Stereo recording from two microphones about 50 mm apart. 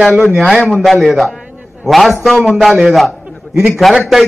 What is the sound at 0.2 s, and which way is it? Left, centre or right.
Speech, right.